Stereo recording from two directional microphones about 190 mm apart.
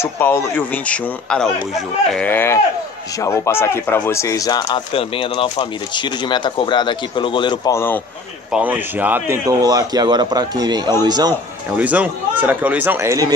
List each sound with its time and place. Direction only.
0.0 s a man's voice: 10° left (ahead or behind)
8.5 s a man's voice: 5° right (ahead or behind)
11.7 s speech: 10° right (ahead or behind)